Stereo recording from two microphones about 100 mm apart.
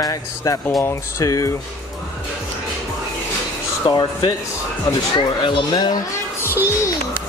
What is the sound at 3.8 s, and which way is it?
Speech, 45° left (ahead or behind).